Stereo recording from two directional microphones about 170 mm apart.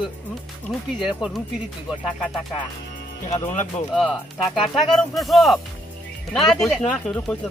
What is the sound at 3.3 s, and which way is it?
Speech, 40° left (ahead or behind).